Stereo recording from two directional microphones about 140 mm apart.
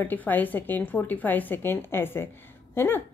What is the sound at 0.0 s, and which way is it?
A woman's voice, 10° left (ahead or behind).